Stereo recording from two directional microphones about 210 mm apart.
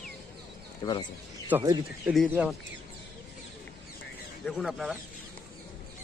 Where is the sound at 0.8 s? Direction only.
20° left (ahead or behind).